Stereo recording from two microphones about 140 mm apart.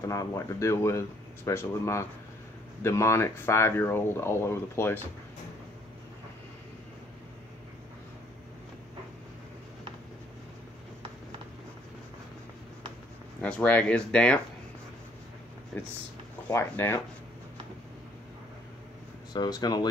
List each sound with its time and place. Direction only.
0.0 s speech: 25° left (ahead or behind)
13.4 s speech: 10° left (ahead or behind)
16.4 s speech: 20° left (ahead or behind)
19.3 s speech: 30° left (ahead or behind)